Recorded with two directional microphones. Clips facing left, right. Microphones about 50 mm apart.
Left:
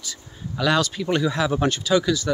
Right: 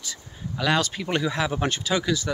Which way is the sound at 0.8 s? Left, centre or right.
Right.